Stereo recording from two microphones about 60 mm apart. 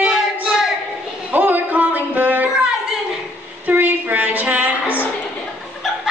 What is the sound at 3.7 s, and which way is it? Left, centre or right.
Music, right.